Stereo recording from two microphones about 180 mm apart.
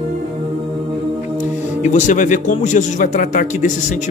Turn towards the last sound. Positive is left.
turn(degrees=45)  # may be behind; listen again after turning